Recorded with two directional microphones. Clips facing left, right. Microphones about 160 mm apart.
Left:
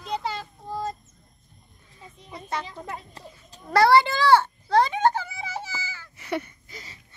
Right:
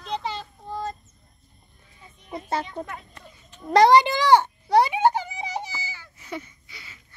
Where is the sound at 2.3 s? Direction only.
30° right (ahead or behind).